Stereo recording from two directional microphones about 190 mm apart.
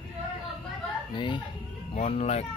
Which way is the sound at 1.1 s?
25° left (ahead or behind).